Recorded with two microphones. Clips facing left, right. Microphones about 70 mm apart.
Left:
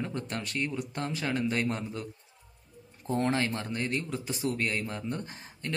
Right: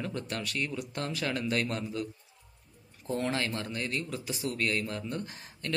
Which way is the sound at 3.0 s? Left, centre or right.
Left.